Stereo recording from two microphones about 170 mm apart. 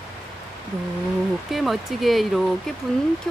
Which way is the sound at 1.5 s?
Centre (ahead or behind).